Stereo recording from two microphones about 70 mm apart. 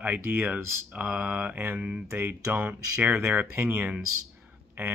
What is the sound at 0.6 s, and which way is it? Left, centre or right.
Speech, right.